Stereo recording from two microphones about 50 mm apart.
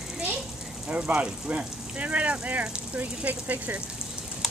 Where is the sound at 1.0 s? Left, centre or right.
Right.